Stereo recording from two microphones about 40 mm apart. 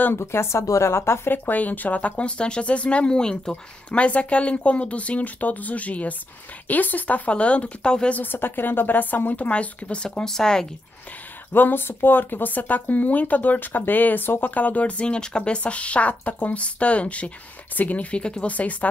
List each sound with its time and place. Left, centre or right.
0.1 s speech: left
1.3 s speech: left
3.1 s speech: centre
4.0 s speech: left
8.2 s speech: left
10.2 s speech: centre
11.5 s speech: left
18.1 s speech: left
18.5 s speech: left